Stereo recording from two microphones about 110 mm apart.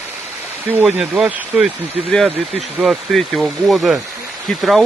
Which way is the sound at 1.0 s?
5° right (ahead or behind).